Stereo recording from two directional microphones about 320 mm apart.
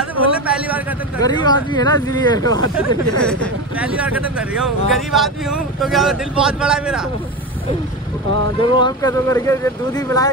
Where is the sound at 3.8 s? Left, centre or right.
Centre.